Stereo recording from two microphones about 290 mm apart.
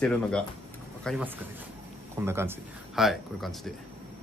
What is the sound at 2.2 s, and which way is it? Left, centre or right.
Speech, centre.